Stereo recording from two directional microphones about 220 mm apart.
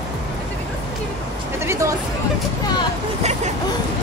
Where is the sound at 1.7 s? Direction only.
15° right (ahead or behind).